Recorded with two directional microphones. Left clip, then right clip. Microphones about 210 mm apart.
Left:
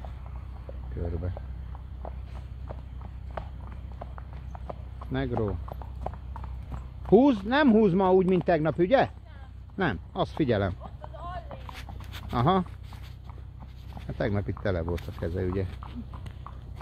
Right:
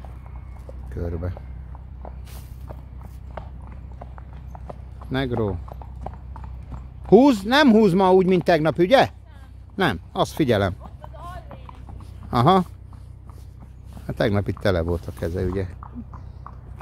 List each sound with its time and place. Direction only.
3.4 s walk: 10° right (ahead or behind)
5.7 s clip-clop: 15° left (ahead or behind)
7.1 s speech: 30° right (ahead or behind)
10.8 s a sound: 5° right (ahead or behind)
12.3 s speech: 35° right (ahead or behind)
14.0 s a sound: 35° right (ahead or behind)
14.6 s speech: 35° right (ahead or behind)
15.1 s speech: 20° right (ahead or behind)